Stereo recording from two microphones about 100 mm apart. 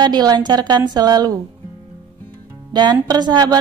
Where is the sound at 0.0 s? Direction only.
40° right (ahead or behind).